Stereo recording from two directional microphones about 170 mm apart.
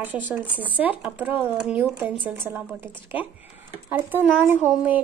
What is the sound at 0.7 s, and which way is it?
Speech, 10° right (ahead or behind).